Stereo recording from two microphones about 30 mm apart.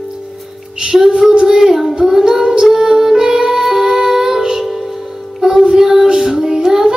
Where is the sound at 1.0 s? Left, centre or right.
Centre.